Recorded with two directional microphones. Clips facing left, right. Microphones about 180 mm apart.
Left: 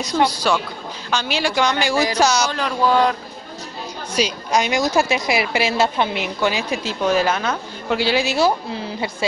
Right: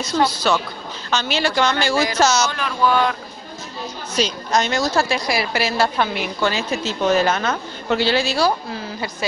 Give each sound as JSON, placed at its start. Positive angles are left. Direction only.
{"t": 0.0, "sound": "a woman's voice", "side_deg": 15}
{"t": 2.5, "sound": "a sound", "side_deg": 35}
{"t": 4.1, "sound": "a woman's voice", "side_deg": 10}